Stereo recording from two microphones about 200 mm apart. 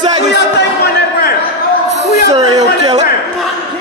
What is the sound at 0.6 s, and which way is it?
Speech, 55° left (ahead or behind).